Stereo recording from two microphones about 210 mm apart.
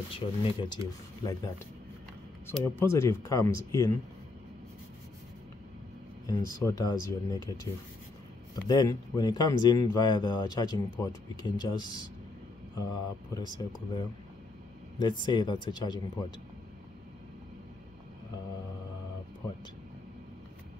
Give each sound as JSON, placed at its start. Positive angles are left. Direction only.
{"t": 0.1, "sound": "speech", "side_deg": 20}
{"t": 6.2, "sound": "speech", "side_deg": 15}
{"t": 8.6, "sound": "speech", "side_deg": 20}